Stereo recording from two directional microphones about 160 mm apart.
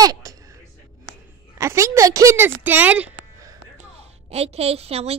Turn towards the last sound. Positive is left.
turn(degrees=-40)  # may be behind; listen again after turning